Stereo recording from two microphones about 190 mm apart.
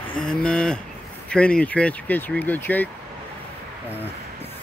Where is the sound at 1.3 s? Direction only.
5° left (ahead or behind).